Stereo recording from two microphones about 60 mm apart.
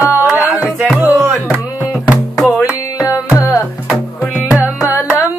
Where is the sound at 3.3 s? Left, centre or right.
Left.